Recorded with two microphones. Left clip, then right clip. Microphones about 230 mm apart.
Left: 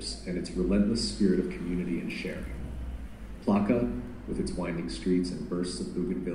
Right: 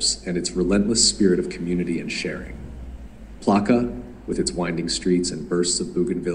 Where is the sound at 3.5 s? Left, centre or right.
Right.